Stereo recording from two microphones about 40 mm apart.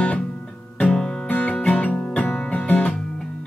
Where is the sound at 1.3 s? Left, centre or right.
Left.